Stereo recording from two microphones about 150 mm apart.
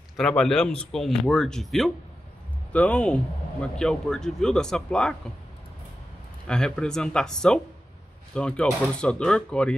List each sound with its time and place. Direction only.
0.2 s speech: 5° left (ahead or behind)
6.4 s speech: 5° left (ahead or behind)